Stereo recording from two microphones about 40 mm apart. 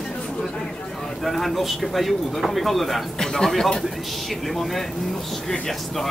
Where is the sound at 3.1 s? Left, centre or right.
Centre.